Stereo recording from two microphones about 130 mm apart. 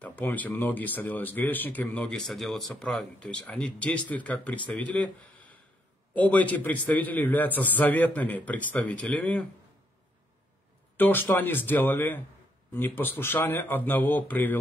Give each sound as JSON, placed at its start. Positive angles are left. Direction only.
{"t": 0.0, "sound": "speech", "side_deg": 15}
{"t": 11.0, "sound": "speech", "side_deg": 15}